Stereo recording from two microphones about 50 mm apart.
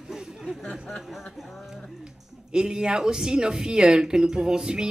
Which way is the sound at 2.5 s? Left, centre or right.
Centre.